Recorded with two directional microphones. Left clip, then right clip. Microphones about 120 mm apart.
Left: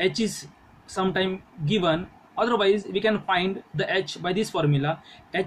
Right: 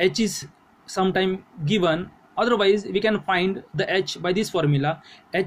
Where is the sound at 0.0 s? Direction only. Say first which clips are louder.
Right 3 dB; 50° right (ahead or behind).